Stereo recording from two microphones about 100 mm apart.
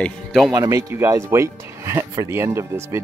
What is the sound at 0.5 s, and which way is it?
A man's voice, 35° right (ahead or behind).